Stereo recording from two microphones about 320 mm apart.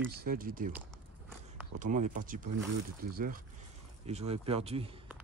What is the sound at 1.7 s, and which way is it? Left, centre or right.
Speech, right.